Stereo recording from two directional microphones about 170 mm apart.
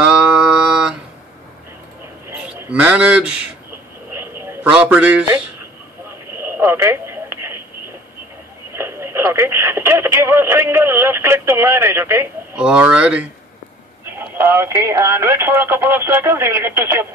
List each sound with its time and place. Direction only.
0.0 s a sound: 5° right (ahead or behind)
2.3 s a man's voice: 5° right (ahead or behind)
4.5 s a man's voice: 10° right (ahead or behind)
6.5 s telephone: 15° right (ahead or behind)
8.7 s speech: 15° right (ahead or behind)